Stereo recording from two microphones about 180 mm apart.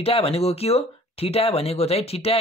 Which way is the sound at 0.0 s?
35° left (ahead or behind).